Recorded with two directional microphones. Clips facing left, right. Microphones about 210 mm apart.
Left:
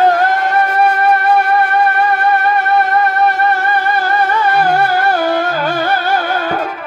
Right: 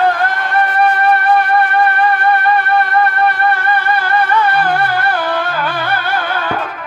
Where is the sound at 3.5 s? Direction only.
45° left (ahead or behind).